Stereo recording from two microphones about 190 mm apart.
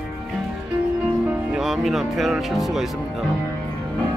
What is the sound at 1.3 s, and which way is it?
Speech, 5° right (ahead or behind).